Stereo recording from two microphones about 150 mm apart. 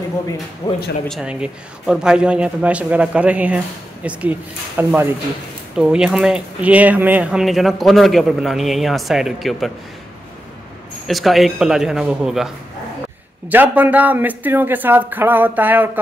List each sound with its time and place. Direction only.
0.6 s speech: 25° left (ahead or behind)
1.2 s speech: 5° right (ahead or behind)
11.1 s speech: centre (ahead or behind)
13.5 s speech: 10° right (ahead or behind)